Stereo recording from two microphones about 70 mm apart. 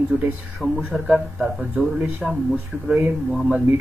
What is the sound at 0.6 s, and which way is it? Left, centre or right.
Speech, centre.